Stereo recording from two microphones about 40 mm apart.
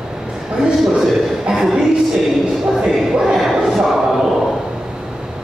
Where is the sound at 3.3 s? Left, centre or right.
Centre.